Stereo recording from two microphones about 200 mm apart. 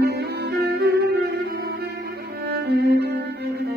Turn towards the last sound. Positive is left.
turn(degrees=-55)  # may be behind; listen again after turning